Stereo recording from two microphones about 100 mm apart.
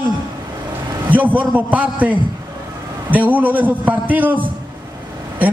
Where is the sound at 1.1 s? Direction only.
15° right (ahead or behind).